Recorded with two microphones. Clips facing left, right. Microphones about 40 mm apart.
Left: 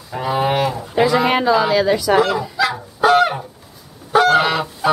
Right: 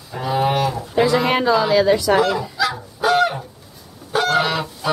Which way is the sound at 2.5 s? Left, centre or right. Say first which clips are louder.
Left 3 dB; centre.